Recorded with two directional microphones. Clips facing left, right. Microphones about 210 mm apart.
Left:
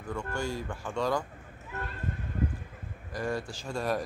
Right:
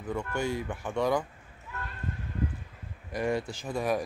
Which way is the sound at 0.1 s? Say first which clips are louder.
Right 3 dB; 20° right (ahead or behind).